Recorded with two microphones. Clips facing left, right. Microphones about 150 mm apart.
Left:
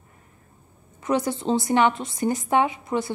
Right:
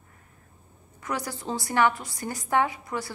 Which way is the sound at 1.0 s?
25° left (ahead or behind).